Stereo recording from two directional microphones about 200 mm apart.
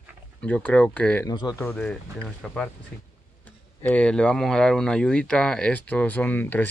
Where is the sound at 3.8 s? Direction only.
5° left (ahead or behind).